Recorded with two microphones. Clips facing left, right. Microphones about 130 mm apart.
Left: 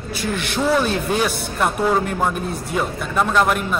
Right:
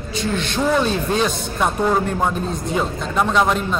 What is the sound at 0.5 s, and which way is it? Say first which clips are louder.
A man's voice: even; 5° left (ahead or behind).